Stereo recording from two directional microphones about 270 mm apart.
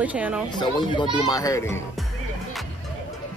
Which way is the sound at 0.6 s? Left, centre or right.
Centre.